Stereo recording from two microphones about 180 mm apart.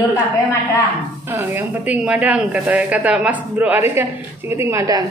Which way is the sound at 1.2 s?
10° right (ahead or behind).